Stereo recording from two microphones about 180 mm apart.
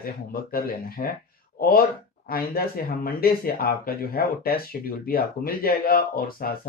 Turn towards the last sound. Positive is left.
turn(degrees=55)  # may be behind; listen again after turning